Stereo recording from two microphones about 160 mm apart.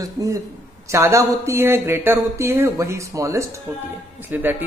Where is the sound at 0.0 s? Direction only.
20° right (ahead or behind).